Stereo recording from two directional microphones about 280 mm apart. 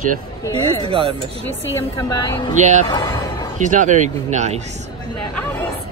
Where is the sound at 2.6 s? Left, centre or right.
Right.